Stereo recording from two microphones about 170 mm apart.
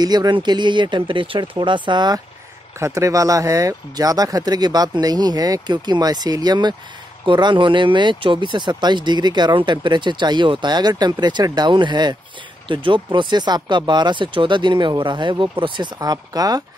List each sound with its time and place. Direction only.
0.0 s speech: 25° right (ahead or behind)